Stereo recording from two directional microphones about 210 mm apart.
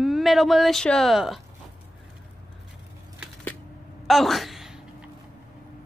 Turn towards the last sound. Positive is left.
turn(degrees=0)  # may be behind; listen again after turning